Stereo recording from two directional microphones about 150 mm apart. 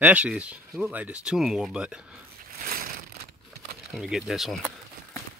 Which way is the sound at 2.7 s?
80° right.